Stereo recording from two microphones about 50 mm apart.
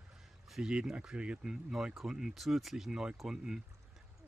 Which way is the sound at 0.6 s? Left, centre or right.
Centre.